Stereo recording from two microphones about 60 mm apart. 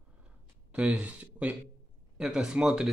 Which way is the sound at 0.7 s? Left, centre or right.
Right.